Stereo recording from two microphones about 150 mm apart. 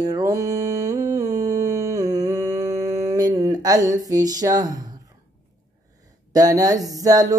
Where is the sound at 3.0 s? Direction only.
25° right (ahead or behind).